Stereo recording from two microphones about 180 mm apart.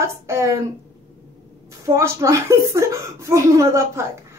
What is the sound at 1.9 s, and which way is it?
A woman's voice, 15° right (ahead or behind).